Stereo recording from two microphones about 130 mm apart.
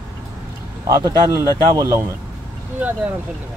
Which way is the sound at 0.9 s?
25° right (ahead or behind).